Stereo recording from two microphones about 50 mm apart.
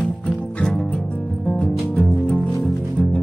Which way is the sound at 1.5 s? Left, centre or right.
Left.